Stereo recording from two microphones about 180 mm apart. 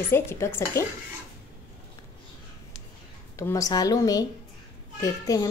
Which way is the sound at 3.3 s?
15° left (ahead or behind).